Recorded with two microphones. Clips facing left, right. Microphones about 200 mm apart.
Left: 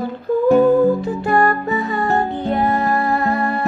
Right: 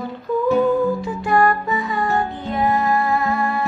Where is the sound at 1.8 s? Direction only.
65° left (ahead or behind).